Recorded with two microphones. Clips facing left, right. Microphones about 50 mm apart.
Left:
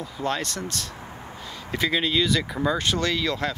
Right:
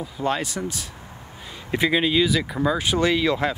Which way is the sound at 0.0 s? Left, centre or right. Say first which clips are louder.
Right 3 dB; centre.